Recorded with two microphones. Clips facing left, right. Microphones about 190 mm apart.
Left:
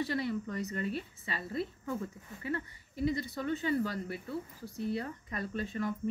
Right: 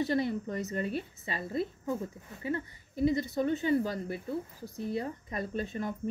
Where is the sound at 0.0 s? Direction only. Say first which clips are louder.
Right 4 dB; 25° right (ahead or behind).